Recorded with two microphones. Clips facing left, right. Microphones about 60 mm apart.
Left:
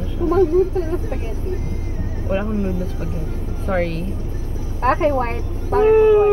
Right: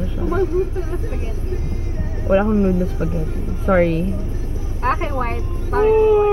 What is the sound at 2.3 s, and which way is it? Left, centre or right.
Speech, centre.